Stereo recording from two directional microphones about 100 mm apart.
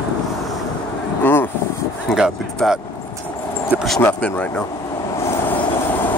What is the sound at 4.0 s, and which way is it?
Speech, 15° left (ahead or behind).